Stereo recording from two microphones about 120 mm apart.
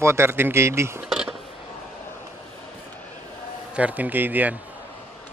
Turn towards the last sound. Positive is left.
turn(degrees=-15)  # may be behind; listen again after turning